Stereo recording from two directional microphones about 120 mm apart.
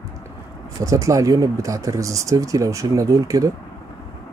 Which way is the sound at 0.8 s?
30° right (ahead or behind).